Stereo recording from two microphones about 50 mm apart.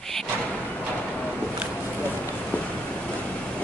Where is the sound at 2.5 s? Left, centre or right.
Left.